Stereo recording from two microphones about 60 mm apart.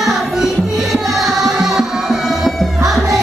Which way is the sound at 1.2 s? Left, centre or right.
Centre.